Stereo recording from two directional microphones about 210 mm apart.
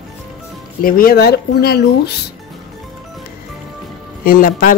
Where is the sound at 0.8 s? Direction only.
45° left (ahead or behind).